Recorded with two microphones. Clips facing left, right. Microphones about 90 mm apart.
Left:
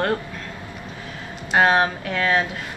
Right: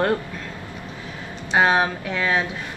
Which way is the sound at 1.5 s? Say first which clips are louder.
Left 1 dB; 10° right (ahead or behind).